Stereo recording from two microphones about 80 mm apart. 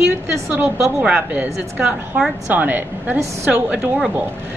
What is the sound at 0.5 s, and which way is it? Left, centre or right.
A woman's voice, right.